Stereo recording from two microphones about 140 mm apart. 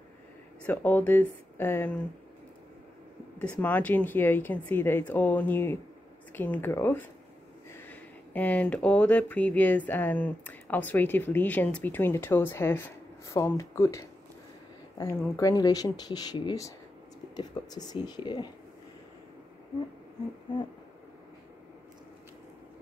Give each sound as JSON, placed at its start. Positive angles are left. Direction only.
{"t": 0.7, "sound": "speech", "side_deg": 10}
{"t": 3.3, "sound": "speech", "side_deg": 10}